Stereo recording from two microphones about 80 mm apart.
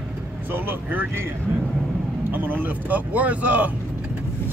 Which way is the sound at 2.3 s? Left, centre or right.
Right.